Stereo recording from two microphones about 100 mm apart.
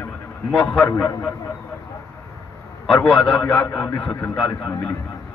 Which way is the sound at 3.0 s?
10° left (ahead or behind).